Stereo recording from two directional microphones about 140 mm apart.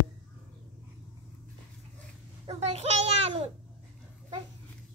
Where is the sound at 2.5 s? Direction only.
50° right (ahead or behind).